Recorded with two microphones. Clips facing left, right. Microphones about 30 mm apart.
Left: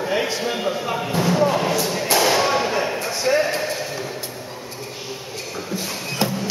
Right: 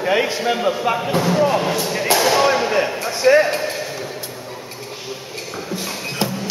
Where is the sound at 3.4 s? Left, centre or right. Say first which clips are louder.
Right 2 dB; right.